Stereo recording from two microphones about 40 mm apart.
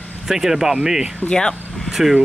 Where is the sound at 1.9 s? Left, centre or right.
Centre.